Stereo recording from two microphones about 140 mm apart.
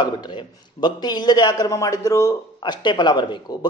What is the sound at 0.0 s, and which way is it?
A man's voice, 30° left (ahead or behind).